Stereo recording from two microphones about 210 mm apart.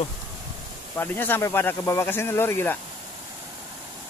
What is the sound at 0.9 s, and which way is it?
Speech, 10° left (ahead or behind).